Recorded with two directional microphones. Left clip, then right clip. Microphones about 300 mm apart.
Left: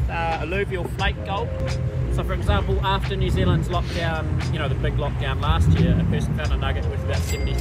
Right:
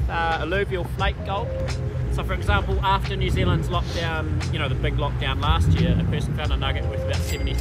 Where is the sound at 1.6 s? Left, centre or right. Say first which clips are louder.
Left 2 dB; centre.